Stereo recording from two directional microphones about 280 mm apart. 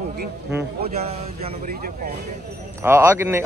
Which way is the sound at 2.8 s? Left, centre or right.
Centre.